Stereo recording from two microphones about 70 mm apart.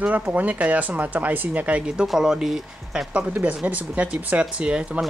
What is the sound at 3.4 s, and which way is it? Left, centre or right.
Speech, right.